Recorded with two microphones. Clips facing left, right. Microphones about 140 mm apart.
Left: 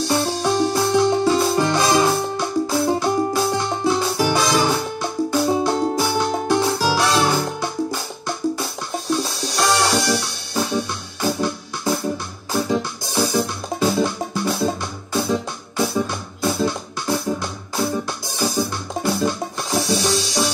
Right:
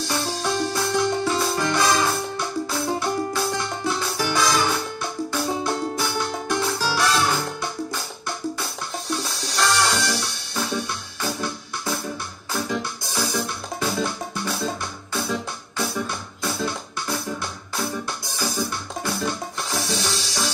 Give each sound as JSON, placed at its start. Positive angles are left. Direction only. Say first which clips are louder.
{"t": 0.1, "sound": "music", "louder": "left 5 dB", "side_deg": 30}
{"t": 9.2, "sound": "music", "louder": "left 3 dB", "side_deg": 25}
{"t": 15.8, "sound": "music", "louder": "left 6 dB", "side_deg": 25}